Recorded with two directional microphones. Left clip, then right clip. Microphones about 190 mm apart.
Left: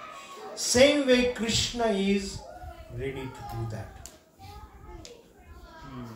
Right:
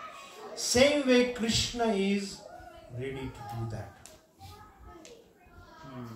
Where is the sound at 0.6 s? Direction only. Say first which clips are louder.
Left 3 dB; 25° left (ahead or behind).